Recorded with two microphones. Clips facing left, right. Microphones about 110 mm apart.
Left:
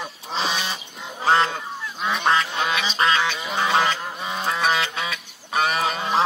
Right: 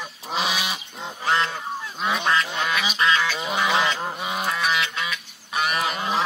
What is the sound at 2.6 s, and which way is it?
Duck, 20° left (ahead or behind).